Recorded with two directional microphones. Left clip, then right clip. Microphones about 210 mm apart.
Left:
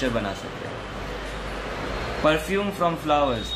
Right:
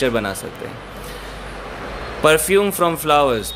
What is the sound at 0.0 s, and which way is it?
Speech, 45° right (ahead or behind).